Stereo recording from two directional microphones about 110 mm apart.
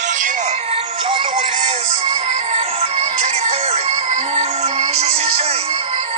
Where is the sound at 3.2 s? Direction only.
80° right; by 6.1 s 65° right (ahead or behind).